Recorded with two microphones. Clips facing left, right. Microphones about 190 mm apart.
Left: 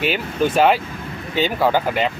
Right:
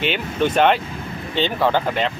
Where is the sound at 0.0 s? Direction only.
5° left (ahead or behind).